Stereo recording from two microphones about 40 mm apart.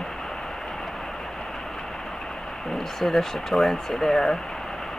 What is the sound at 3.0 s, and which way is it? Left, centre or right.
Speech, centre.